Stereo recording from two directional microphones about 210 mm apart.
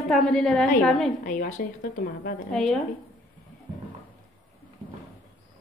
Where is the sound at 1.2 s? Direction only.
40° left (ahead or behind).